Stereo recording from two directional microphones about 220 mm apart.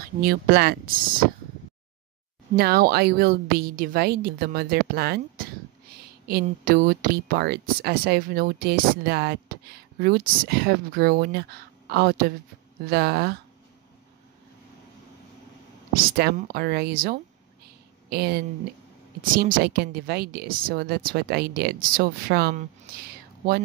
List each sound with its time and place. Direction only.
0.2 s speech: 45° right (ahead or behind)
2.5 s speech: 45° right (ahead or behind)
15.9 s speech: 45° right (ahead or behind)